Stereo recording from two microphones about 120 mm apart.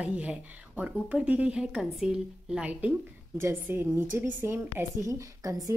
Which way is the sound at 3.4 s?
20° right (ahead or behind).